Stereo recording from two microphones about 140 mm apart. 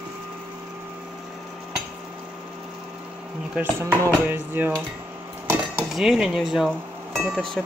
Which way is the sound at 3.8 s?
20° right (ahead or behind).